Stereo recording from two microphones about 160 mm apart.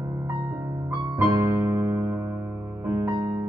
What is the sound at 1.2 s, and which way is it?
Electric piano, 15° right (ahead or behind).